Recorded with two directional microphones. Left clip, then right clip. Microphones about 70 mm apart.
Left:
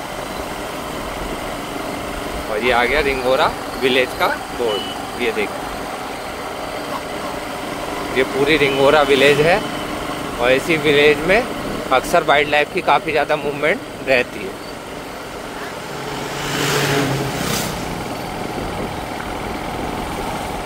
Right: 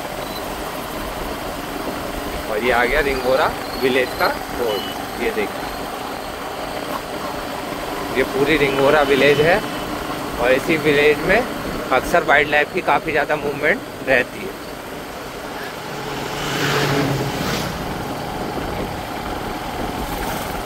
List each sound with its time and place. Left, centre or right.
2.6 s speech: left
8.2 s speech: left
11.9 s speech: left
12.4 s speech: left